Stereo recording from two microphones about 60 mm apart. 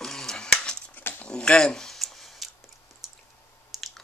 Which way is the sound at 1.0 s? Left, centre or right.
Left.